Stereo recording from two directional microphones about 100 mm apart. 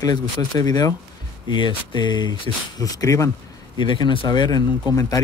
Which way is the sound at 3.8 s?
50° left (ahead or behind).